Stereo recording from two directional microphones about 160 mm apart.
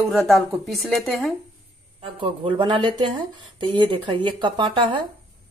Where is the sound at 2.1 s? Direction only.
30° right (ahead or behind).